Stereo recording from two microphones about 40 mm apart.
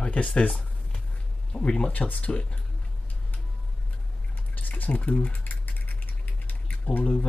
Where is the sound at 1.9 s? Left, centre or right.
Left.